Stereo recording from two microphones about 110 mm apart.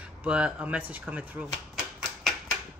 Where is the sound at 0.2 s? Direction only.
10° right (ahead or behind).